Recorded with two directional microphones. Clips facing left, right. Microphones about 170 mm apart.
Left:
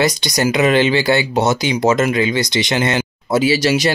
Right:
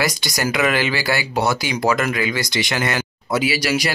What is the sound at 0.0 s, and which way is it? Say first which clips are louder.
Speech: left 5 dB; 20° left (ahead or behind).